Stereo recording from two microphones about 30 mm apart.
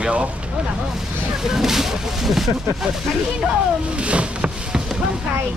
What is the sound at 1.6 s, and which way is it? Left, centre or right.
Speech, centre.